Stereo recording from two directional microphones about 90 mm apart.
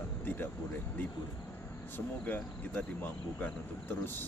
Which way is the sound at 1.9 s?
20° left (ahead or behind).